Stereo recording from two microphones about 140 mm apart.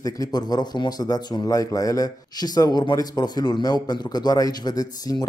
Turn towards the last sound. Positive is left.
turn(degrees=25)  # may be behind; listen again after turning